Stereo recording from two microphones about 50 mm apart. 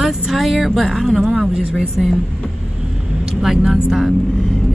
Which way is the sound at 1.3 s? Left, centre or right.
Centre.